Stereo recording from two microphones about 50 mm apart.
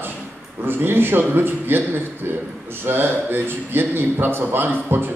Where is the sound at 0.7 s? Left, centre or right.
Right.